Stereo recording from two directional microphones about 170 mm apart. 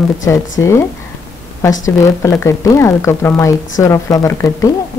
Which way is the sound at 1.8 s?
20° left (ahead or behind).